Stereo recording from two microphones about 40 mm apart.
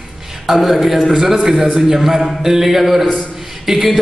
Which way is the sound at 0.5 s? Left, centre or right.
Centre.